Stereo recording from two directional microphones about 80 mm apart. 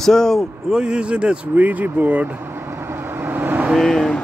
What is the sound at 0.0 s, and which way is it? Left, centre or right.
Speech, centre.